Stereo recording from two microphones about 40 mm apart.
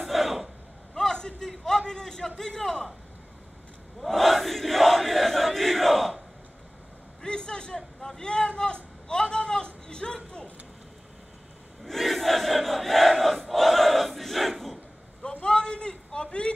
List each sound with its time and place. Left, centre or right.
0.0 s gasp: centre
0.9 s a sound: centre
1.7 s a man's voice: centre
4.0 s crowd: centre
7.2 s vehicle: left
9.8 s children playing: left
11.8 s crowd: centre
15.4 s a sound: left